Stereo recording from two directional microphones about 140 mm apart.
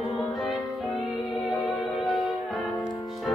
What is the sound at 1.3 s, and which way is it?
Music, 35° left (ahead or behind).